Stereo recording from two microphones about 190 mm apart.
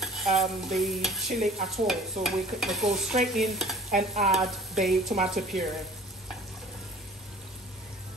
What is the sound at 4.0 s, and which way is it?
Stir, 35° right (ahead or behind).